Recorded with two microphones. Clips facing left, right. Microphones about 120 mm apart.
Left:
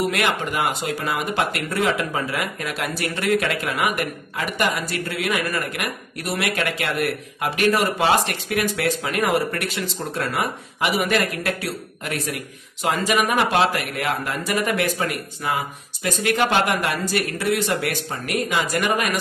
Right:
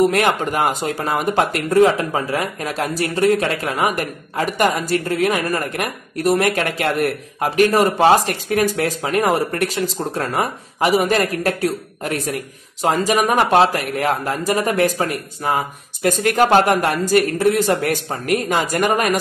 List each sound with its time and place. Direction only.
0.0 s speech: 40° right (ahead or behind)